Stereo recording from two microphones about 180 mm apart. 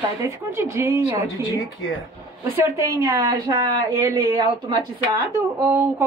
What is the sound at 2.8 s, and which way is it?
A woman's voice, 15° right (ahead or behind).